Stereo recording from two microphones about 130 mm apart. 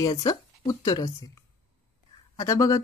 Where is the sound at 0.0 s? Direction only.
30° left (ahead or behind).